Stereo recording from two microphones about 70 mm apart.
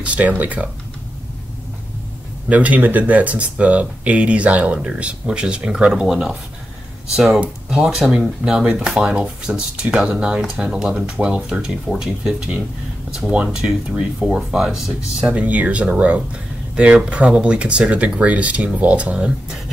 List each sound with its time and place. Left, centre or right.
0.0 s speech: centre
2.5 s speech: right
15.4 s speech: right